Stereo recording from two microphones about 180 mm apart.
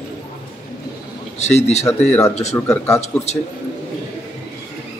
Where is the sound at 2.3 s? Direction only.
40° left (ahead or behind).